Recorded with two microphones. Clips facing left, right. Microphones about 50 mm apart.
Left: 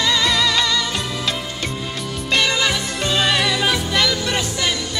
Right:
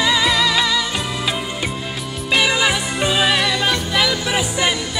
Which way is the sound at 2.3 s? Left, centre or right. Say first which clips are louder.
Right 2 dB; centre.